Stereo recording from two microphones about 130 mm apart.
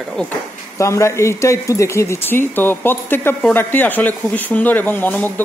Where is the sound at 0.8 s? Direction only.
20° left (ahead or behind).